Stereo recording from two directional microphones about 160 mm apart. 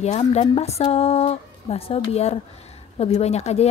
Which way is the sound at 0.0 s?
45° left (ahead or behind).